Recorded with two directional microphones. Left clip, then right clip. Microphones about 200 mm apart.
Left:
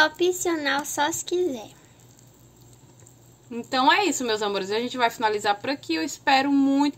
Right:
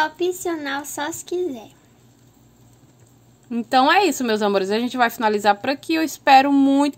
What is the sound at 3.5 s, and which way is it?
A woman's voice, 50° right (ahead or behind).